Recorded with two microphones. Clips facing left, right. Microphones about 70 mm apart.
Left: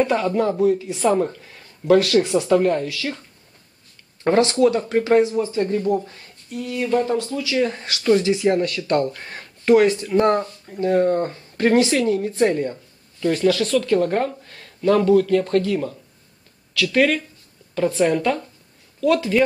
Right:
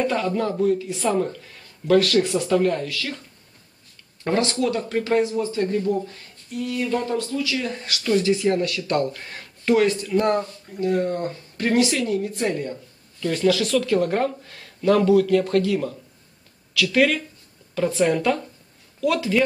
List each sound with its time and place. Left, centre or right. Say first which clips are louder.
0.0 s speech: left 3 dB; centre
4.3 s speech: left 6 dB; left
8.3 s speech: left 2 dB; centre
8.6 s speech: left 2 dB; centre
10.0 s speech: left 3 dB; left
13.3 s speech: left 2 dB; centre